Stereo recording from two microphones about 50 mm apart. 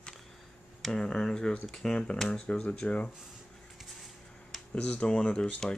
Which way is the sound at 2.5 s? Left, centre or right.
Left.